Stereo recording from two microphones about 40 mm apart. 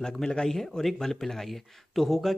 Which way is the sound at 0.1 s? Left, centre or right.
Centre.